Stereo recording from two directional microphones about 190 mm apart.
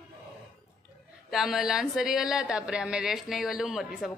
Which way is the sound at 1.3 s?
Centre (ahead or behind).